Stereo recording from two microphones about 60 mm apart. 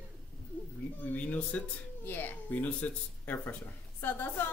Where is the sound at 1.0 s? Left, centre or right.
Left.